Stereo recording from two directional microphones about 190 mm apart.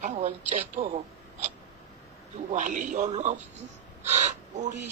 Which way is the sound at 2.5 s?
40° right (ahead or behind).